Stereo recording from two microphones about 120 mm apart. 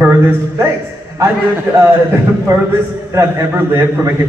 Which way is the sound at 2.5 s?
30° right (ahead or behind).